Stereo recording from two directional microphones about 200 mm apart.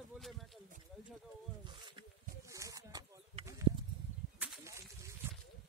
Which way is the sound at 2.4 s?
15° right (ahead or behind).